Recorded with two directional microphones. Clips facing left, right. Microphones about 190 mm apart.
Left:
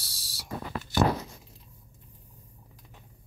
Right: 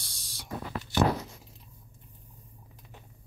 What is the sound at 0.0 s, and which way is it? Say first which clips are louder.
Owl: even; 5° left (ahead or behind).